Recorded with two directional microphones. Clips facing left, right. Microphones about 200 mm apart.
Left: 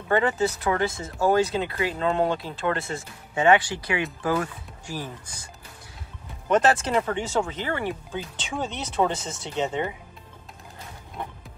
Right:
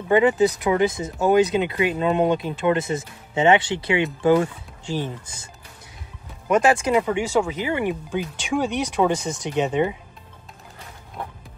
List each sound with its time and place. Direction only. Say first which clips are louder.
0.1 s speech: right 6 dB; 15° right (ahead or behind)
6.5 s speech: right 3 dB; 10° right (ahead or behind)